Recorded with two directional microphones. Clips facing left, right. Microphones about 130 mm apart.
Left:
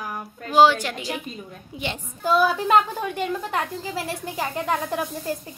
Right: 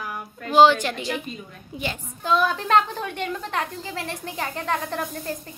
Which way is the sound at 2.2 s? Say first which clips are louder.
Left 2 dB; 5° left (ahead or behind).